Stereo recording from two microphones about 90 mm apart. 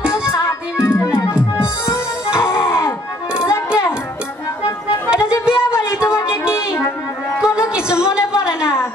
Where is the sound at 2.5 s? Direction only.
25° left (ahead or behind).